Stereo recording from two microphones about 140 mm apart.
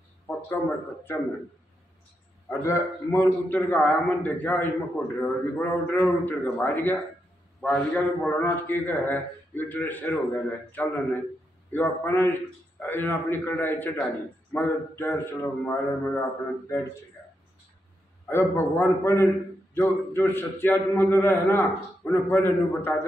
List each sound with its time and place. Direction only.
0.3 s a sound: 15° left (ahead or behind)
2.6 s a man's voice: 20° left (ahead or behind)
18.3 s a man's voice: 15° left (ahead or behind)